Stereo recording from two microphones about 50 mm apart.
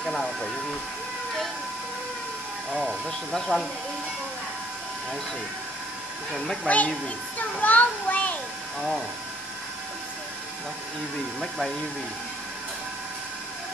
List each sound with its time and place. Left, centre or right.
0.0 s speech: centre
2.7 s speech: centre
3.3 s speech: centre
6.3 s speech: centre
6.7 s a sound: left